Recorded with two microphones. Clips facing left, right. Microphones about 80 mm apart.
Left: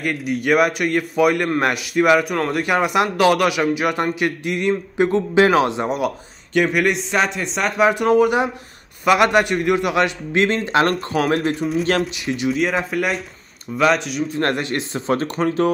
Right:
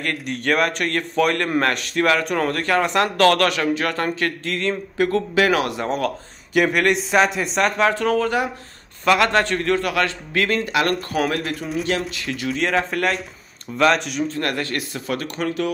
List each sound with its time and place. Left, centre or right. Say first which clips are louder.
0.0 s a man's voice: left 3 dB; centre
2.6 s a man's voice: left 2 dB; centre
5.9 s a man's voice: left 1 dB; centre
6.5 s speech: even; centre
7.8 s a man's voice: left 8 dB; centre; by 11.5 s left
12.3 s a man's voice: left 4 dB; centre
12.5 s speech: left 1 dB; centre
14.4 s a man's voice: left 3 dB; left